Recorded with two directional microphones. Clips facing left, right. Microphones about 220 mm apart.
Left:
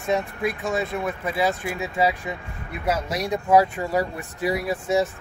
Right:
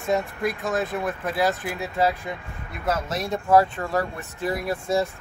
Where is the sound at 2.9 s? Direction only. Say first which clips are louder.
Left 1 dB; 15° left (ahead or behind).